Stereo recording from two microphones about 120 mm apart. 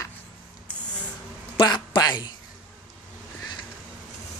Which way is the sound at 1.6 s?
35° left (ahead or behind).